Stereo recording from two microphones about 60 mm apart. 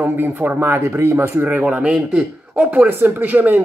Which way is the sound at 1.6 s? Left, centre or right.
Right.